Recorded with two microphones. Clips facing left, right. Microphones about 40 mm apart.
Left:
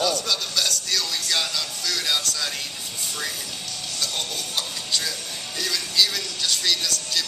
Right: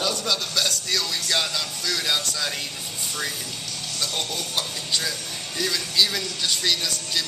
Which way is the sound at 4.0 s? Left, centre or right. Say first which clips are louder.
Right 1 dB; centre.